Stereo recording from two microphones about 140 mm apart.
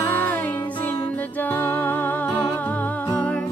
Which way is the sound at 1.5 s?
10° left (ahead or behind).